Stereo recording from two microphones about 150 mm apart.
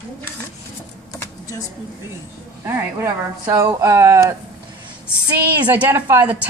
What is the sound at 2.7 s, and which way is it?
Speech, 15° right (ahead or behind).